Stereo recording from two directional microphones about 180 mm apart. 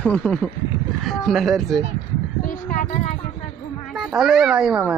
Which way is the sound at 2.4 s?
50° left (ahead or behind).